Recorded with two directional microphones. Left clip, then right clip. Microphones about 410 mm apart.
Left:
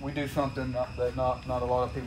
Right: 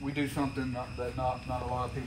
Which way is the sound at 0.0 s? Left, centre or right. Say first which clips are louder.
Even; left.